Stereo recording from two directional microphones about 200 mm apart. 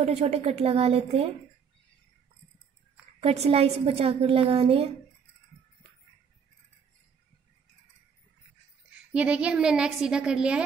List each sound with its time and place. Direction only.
0.0 s a woman's voice: 30° right (ahead or behind)
3.2 s a woman's voice: 30° right (ahead or behind)
9.1 s a woman's voice: 5° right (ahead or behind)